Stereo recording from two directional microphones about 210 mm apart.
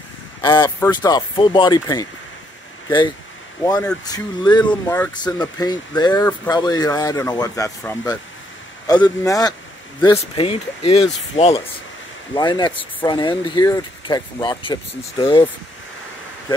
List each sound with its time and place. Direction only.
0.4 s speech: 20° left (ahead or behind)
4.0 s speech: 20° left (ahead or behind)